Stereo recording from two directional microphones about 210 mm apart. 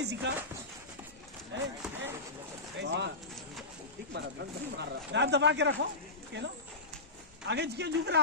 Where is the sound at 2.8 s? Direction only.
55° right (ahead or behind).